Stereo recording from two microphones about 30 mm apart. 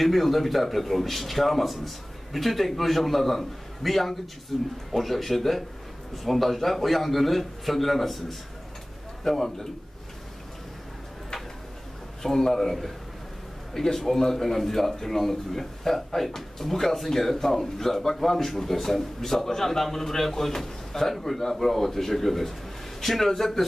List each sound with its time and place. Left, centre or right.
0.0 s a man's voice: centre
12.2 s speech: centre
13.9 s speech: centre